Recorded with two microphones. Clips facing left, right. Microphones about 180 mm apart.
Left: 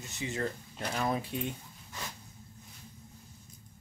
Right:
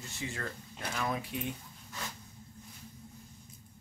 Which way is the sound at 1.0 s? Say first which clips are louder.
Left 3 dB; 30° left (ahead or behind).